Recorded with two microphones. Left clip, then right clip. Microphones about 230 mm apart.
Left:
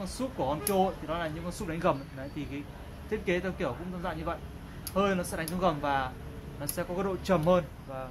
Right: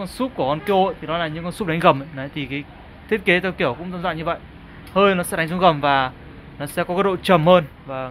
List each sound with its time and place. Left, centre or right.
0.0 s speech: right